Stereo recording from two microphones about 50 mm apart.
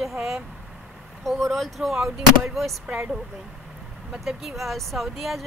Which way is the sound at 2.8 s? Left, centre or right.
Right.